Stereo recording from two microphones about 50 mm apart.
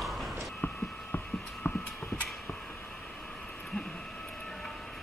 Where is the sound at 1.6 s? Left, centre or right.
Left.